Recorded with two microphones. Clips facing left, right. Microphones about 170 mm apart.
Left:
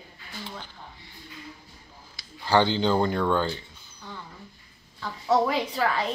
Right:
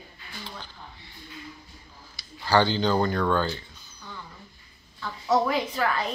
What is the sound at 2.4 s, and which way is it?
Speech, 20° left (ahead or behind).